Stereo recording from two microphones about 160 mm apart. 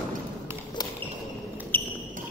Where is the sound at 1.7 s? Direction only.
10° left (ahead or behind).